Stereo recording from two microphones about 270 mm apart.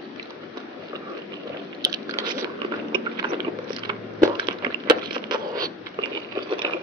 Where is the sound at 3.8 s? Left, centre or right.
Centre.